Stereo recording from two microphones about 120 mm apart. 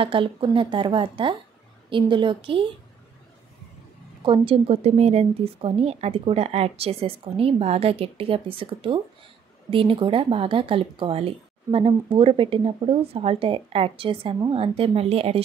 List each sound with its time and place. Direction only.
0.0 s a woman's voice: 45° right (ahead or behind)
4.2 s a woman's voice: 45° right (ahead or behind)